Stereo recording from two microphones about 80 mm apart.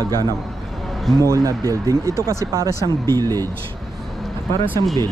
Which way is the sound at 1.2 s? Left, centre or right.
Right.